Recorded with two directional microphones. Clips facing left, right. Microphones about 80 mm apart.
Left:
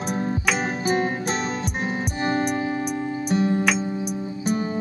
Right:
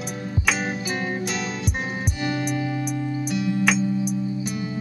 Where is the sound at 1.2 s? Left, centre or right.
Left.